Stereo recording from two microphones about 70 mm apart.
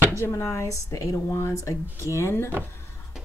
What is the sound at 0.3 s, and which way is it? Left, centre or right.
Speech, left.